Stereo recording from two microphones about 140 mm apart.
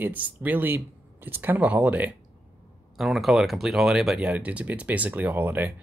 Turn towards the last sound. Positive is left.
turn(degrees=-15)  # may be behind; listen again after turning